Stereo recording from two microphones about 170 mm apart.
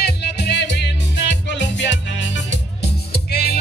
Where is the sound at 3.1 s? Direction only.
70° left (ahead or behind).